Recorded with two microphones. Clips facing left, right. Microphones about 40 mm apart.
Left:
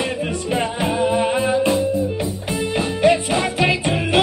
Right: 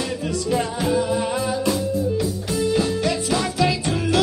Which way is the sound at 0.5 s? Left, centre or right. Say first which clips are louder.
Even; left.